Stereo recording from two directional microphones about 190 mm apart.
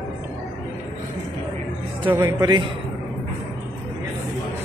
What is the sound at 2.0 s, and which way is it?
Speech, 20° right (ahead or behind).